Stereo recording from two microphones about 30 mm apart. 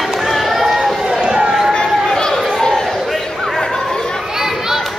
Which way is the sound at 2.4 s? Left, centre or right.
Centre.